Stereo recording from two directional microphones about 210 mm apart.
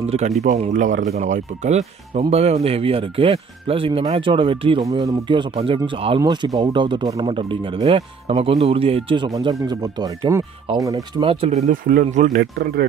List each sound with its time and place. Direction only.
0.4 s speech: 35° right (ahead or behind)
12.4 s speech: 50° right (ahead or behind)